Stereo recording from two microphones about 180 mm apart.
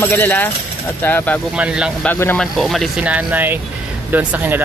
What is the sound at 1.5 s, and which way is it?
Speech, 5° right (ahead or behind).